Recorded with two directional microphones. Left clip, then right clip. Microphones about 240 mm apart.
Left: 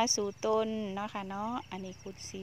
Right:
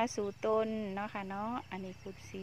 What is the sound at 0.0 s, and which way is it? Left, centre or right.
Speech, centre.